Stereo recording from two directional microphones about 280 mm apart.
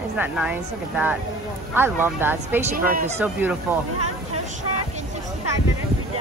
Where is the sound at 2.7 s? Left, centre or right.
Right.